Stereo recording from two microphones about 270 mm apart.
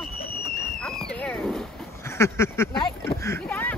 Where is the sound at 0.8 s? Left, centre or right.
Centre.